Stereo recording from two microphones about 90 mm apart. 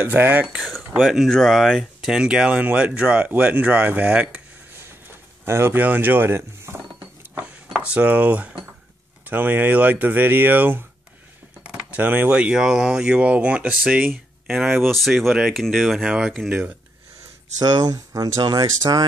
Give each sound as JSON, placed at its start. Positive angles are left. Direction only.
{"t": 0.0, "sound": "speech", "side_deg": -20}
{"t": 0.6, "sound": "a sound", "side_deg": 0}
{"t": 1.0, "sound": "speech", "side_deg": 0}
{"t": 5.4, "sound": "speech", "side_deg": -30}
{"t": 6.9, "sound": "a sound", "side_deg": -10}
{"t": 9.2, "sound": "speech", "side_deg": -20}
{"t": 17.6, "sound": "speech", "side_deg": -50}